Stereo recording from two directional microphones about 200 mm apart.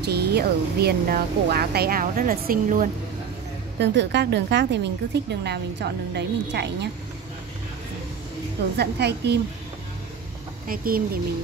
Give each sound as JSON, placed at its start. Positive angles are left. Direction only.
{"t": 0.0, "sound": "speech", "side_deg": -55}
{"t": 3.8, "sound": "a woman's voice", "side_deg": -60}
{"t": 8.7, "sound": "a woman's voice", "side_deg": -55}
{"t": 10.7, "sound": "speech", "side_deg": -45}